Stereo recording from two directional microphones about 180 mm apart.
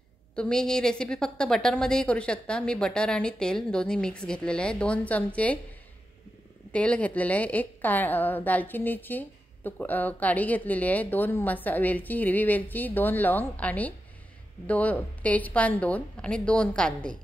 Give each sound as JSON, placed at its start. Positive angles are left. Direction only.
{"t": 0.4, "sound": "a woman's voice", "side_deg": 5}
{"t": 6.7, "sound": "a woman's voice", "side_deg": 5}